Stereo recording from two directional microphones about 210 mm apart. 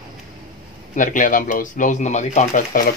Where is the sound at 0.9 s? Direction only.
40° left (ahead or behind).